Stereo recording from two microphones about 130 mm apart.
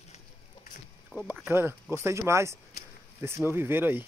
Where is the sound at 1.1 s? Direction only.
5° left (ahead or behind).